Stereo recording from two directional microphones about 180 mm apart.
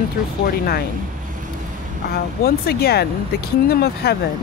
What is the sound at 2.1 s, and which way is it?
Speech, 60° left (ahead or behind).